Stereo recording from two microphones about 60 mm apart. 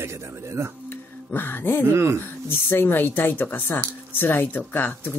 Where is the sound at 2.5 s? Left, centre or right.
Left.